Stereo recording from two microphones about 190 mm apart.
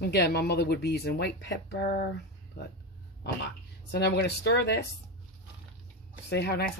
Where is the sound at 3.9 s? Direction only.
60° left (ahead or behind).